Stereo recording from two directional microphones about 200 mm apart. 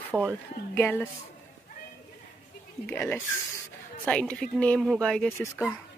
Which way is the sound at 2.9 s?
5° left (ahead or behind).